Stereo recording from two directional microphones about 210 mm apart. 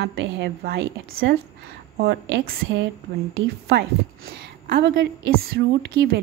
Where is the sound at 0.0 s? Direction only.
55° right (ahead or behind).